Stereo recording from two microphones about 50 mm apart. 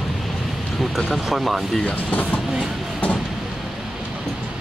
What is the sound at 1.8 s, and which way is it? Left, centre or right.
Speech, left.